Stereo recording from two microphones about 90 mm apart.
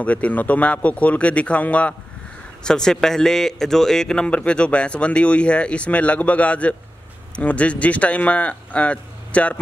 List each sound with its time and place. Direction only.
0.0 s a man's voice: 15° left (ahead or behind)